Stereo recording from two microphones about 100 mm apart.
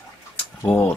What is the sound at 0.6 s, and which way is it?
Speech, 20° left (ahead or behind).